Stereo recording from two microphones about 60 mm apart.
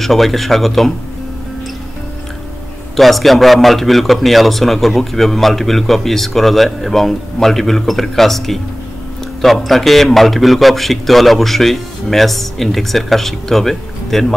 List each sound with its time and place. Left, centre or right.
0.0 s speech: centre
3.0 s speech: centre